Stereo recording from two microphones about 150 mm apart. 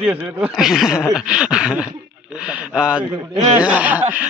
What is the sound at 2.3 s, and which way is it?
Speech, 5° right (ahead or behind).